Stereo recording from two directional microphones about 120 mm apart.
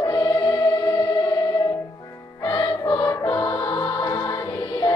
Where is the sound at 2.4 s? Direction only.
40° left (ahead or behind).